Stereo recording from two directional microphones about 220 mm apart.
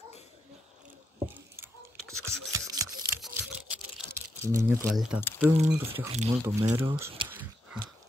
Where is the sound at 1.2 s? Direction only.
10° right (ahead or behind).